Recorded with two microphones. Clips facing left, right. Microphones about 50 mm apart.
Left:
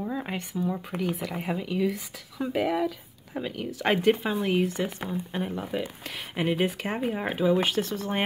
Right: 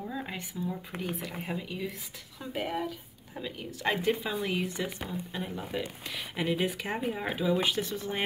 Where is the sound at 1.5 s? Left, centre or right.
Left.